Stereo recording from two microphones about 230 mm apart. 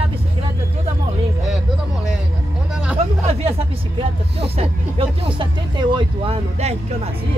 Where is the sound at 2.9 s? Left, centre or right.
Right.